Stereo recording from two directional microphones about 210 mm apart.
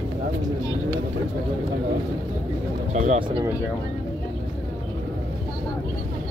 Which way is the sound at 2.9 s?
35° right (ahead or behind).